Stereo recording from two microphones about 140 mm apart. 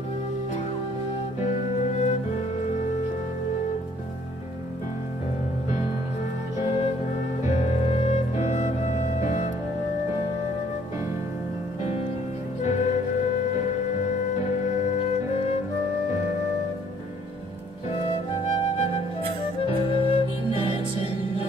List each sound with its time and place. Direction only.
1.4 s music: 60° left (ahead or behind)
6.6 s music: 50° left (ahead or behind)
12.6 s music: 55° left (ahead or behind)
17.8 s music: 45° left (ahead or behind)
18.8 s flute: 45° left (ahead or behind)
19.6 s music: 40° left (ahead or behind)